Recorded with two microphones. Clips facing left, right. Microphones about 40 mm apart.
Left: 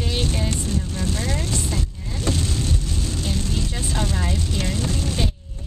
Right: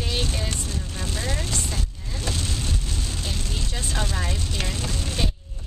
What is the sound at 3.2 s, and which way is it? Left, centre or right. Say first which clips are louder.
Vehicle: left 5 dB; centre.